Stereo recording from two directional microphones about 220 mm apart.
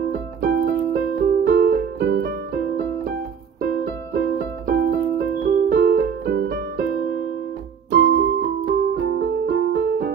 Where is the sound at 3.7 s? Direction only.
45° right (ahead or behind).